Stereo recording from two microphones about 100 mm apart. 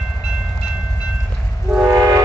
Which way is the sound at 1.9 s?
30° right (ahead or behind).